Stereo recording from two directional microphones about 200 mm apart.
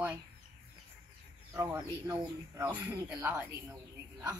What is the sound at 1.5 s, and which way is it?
Speech, 10° right (ahead or behind).